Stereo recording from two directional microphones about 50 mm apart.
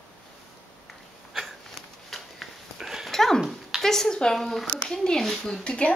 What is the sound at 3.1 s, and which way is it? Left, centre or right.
Dog, centre.